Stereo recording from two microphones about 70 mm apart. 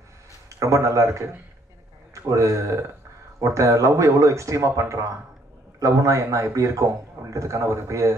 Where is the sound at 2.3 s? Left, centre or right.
Right.